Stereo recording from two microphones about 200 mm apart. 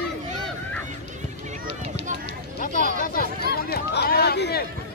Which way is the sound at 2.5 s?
45° left (ahead or behind).